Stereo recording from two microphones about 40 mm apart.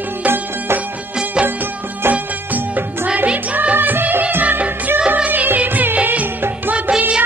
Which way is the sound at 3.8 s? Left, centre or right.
Right.